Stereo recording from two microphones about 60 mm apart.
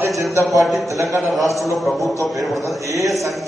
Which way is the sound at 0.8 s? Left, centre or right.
Right.